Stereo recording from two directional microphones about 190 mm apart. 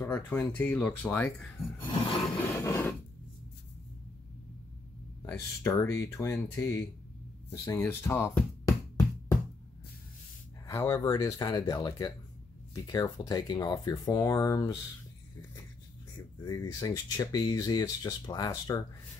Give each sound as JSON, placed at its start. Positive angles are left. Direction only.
{"t": 0.0, "sound": "speech", "side_deg": 10}
{"t": 5.2, "sound": "speech", "side_deg": 15}
{"t": 10.7, "sound": "speech", "side_deg": 15}
{"t": 16.4, "sound": "speech", "side_deg": 20}